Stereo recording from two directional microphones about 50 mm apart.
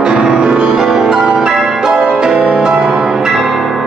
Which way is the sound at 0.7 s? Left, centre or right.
Centre.